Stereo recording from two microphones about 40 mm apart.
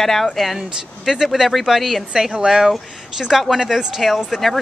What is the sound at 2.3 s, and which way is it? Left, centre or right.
Speech, centre.